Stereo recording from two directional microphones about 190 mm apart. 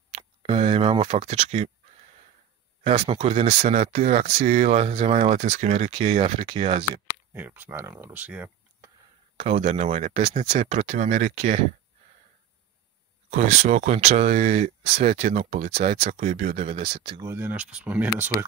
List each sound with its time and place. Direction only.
0.1 s a sound: 30° right (ahead or behind)
2.8 s speech: 30° right (ahead or behind)
7.1 s speech: 10° right (ahead or behind)
9.4 s speech: 35° right (ahead or behind)
13.3 s speech: 35° right (ahead or behind)
17.3 s speech: 10° right (ahead or behind)